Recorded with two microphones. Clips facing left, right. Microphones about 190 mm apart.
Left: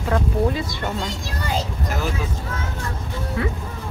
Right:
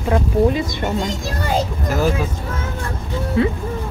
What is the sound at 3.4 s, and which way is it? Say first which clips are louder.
Speech: right 8 dB; 25° right (ahead or behind).